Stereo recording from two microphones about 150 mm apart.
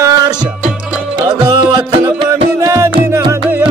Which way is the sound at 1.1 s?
30° right (ahead or behind).